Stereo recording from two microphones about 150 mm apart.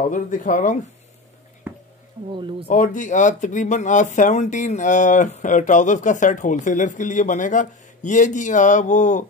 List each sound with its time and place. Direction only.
0.1 s speech: 60° left (ahead or behind)
1.6 s a sound: 15° right (ahead or behind)
2.7 s speech: 60° left (ahead or behind)